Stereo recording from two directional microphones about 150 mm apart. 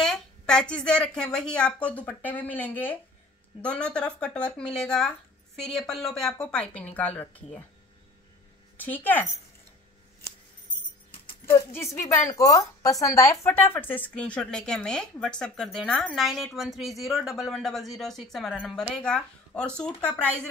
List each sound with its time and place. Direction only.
0.0 s a woman's voice: 5° left (ahead or behind)
8.7 s a woman's voice: 10° left (ahead or behind)
11.4 s a woman's voice: 15° left (ahead or behind)